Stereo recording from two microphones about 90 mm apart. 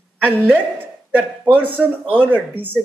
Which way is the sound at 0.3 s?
25° right (ahead or behind).